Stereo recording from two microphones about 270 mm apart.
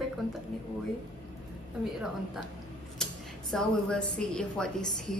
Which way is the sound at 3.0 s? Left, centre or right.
Centre.